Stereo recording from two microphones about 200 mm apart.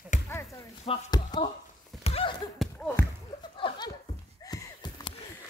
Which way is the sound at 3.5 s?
25° left (ahead or behind).